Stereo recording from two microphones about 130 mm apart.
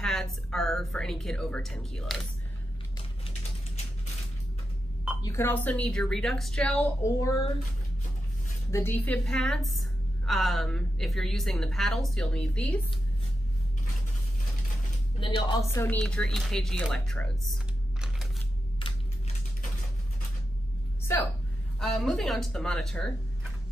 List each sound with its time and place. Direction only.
0.0 s a woman's voice: 5° left (ahead or behind)
5.2 s speech: 20° left (ahead or behind)
7.0 s speech: 25° left (ahead or behind)
8.7 s a woman's voice: 15° left (ahead or behind)
15.1 s speech: 40° left (ahead or behind)
15.6 s speech: 20° left (ahead or behind)
16.0 s a woman's voice: 5° left (ahead or behind)
18.8 s a sound: 40° left (ahead or behind)
21.0 s a sound: 20° left (ahead or behind)
21.7 s a woman's voice: centre (ahead or behind)